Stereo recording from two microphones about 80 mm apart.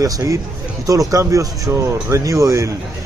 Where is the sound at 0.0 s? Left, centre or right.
Right.